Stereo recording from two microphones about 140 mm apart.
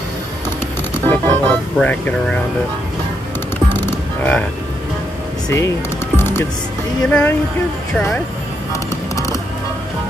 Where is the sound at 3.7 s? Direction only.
15° left (ahead or behind).